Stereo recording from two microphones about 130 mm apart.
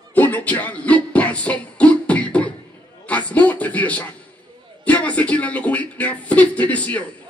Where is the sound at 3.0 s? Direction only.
10° left (ahead or behind).